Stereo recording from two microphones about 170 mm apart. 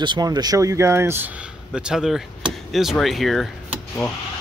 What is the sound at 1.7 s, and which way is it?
Speech, 5° right (ahead or behind).